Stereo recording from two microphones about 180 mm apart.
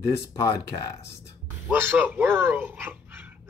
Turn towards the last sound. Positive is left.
turn(degrees=-10)  # may be behind; listen again after turning